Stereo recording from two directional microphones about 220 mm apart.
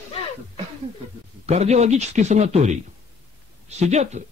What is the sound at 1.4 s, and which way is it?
A man's voice, 30° right (ahead or behind).